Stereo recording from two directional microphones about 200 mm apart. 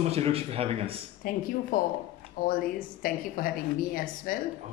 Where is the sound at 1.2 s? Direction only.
45° left (ahead or behind).